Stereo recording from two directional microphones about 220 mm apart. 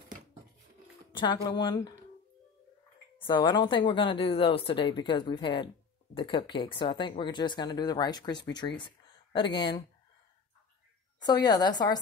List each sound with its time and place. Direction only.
1.1 s speech: 20° left (ahead or behind)
3.3 s speech: 20° left (ahead or behind)
8.7 s a sound: 20° left (ahead or behind)
11.2 s speech: 20° left (ahead or behind)